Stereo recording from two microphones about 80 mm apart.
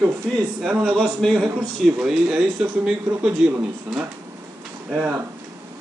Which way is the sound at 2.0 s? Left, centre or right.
Centre.